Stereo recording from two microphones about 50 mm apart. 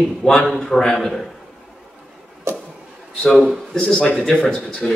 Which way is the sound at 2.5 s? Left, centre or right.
Right.